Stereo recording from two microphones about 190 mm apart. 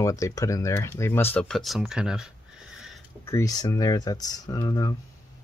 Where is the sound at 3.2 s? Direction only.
15° left (ahead or behind).